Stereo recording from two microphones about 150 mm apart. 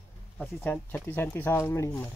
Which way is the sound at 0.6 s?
10° left (ahead or behind).